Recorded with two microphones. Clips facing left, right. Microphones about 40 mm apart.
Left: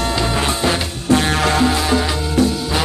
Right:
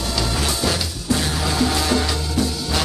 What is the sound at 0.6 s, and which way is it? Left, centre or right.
Music, left.